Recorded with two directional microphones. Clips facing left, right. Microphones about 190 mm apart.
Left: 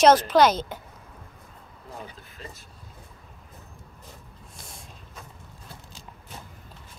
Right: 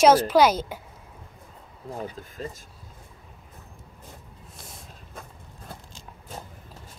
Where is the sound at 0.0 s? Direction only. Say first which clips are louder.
Even; 10° right (ahead or behind).